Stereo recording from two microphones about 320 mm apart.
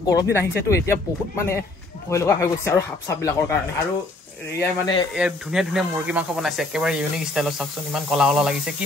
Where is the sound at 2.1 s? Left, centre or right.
Centre.